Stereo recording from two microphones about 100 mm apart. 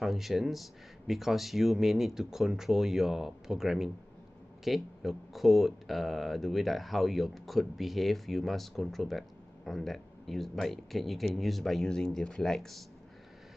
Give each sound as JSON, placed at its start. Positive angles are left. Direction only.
{"t": 0.0, "sound": "speech", "side_deg": 0}